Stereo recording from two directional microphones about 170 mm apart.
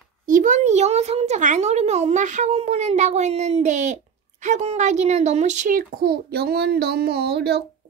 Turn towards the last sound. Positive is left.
turn(degrees=-75)  # may be behind; listen again after turning